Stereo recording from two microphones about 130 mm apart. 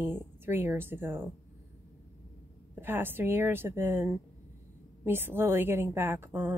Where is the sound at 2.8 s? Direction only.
15° right (ahead or behind).